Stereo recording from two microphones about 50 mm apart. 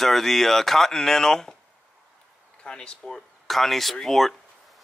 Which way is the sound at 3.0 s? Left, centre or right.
Centre.